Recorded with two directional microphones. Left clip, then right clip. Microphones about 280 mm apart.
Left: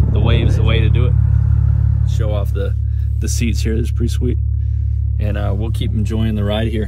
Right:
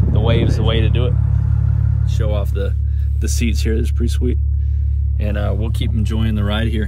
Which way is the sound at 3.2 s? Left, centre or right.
Centre.